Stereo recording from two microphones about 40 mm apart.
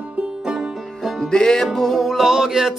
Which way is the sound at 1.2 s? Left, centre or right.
Centre.